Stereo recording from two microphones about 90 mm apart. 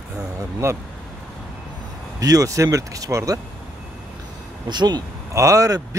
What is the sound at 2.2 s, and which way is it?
Speech, 40° right (ahead or behind).